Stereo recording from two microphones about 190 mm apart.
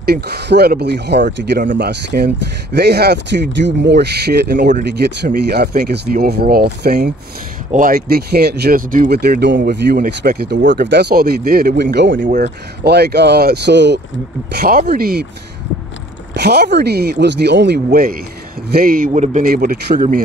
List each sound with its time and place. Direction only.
0.0 s speech: 55° right (ahead or behind)
12.2 s speech: 45° right (ahead or behind); by 14.0 s 65° right (ahead or behind)
14.5 s speech: 50° right (ahead or behind)
16.3 s speech: 60° right (ahead or behind)
17.8 s speech: 50° right (ahead or behind)